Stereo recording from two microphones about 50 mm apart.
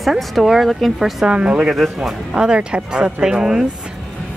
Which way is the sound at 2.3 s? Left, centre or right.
Centre.